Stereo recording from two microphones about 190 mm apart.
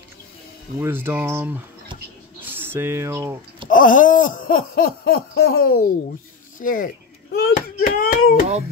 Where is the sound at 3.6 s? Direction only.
45° left (ahead or behind).